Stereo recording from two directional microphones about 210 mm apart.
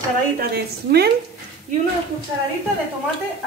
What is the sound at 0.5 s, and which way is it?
Speech, 50° right (ahead or behind).